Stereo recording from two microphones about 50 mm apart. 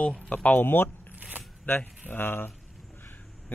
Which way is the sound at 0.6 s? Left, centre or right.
Left.